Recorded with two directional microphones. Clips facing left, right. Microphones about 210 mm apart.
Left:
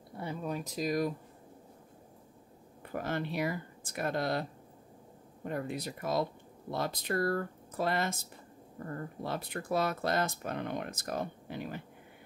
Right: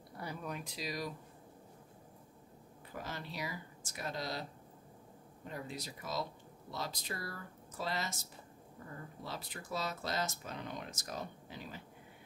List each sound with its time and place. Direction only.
0.2 s speech: 25° left (ahead or behind); by 1.1 s 50° left (ahead or behind)
2.9 s speech: 55° left (ahead or behind)